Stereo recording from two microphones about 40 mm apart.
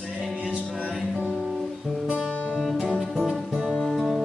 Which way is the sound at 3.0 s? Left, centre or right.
Centre.